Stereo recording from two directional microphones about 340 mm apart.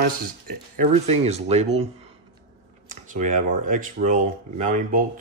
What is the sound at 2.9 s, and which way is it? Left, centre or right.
Computer keyboard, right.